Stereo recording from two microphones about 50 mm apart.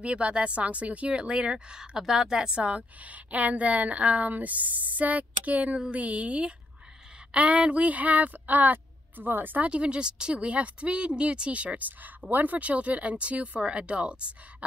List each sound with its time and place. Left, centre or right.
0.0 s a woman's voice: right
9.7 s a woman's voice: right